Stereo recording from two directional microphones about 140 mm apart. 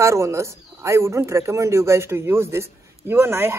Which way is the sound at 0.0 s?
20° right (ahead or behind).